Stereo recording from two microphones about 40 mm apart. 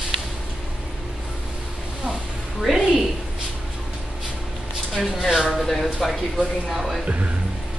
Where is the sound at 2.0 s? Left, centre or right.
Centre.